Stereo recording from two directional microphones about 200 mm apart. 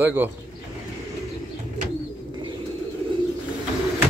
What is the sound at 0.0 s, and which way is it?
Speech, 10° right (ahead or behind).